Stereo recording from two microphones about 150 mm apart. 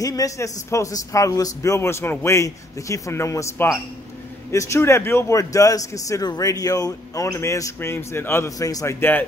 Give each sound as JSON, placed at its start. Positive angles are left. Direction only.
{"t": 0.0, "sound": "a man's voice", "side_deg": 25}